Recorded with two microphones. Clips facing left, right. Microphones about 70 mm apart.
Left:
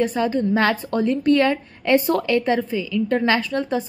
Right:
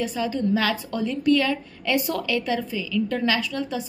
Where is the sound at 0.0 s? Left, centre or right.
Left.